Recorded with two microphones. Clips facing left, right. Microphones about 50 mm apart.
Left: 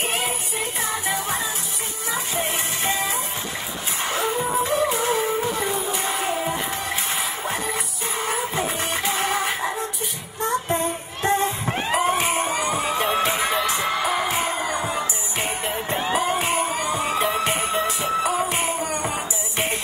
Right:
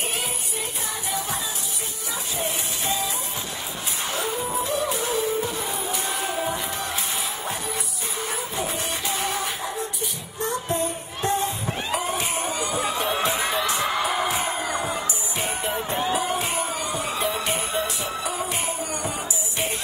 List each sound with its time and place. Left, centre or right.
1.0 s music: left
8.3 s music: left
13.9 s music: centre
15.9 s music: left